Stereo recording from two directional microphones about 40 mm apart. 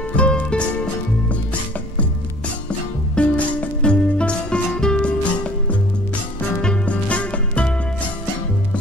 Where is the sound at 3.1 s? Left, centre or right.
Left.